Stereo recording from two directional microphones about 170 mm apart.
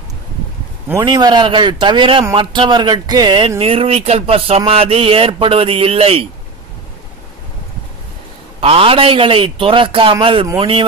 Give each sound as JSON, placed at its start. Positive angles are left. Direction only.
{"t": 1.0, "sound": "a man's voice", "side_deg": -25}
{"t": 8.5, "sound": "speech", "side_deg": -35}